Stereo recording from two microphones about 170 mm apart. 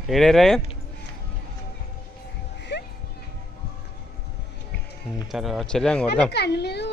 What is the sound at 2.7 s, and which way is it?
Music, 80° left.